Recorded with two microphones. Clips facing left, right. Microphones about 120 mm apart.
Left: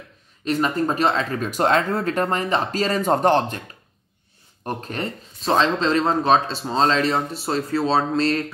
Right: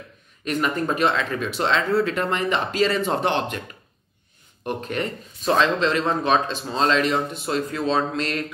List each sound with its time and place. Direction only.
0.5 s speech: 35° left (ahead or behind)
4.6 s speech: 35° left (ahead or behind)